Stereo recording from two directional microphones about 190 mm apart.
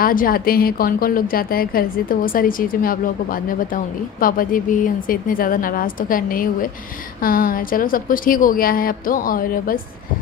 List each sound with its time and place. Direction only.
0.0 s a woman's voice: 50° left (ahead or behind)